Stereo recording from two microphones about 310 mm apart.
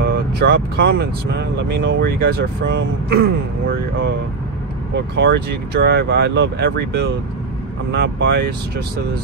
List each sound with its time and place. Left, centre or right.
0.0 s speech: right
4.9 s speech: right